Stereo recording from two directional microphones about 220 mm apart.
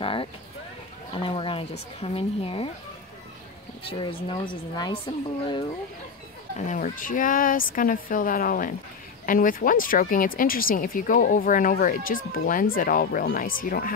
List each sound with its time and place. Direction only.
0.0 s a sound: 25° left (ahead or behind)
1.1 s speech: 25° left (ahead or behind)
3.9 s speech: 25° left (ahead or behind)
6.7 s speech: 35° left (ahead or behind)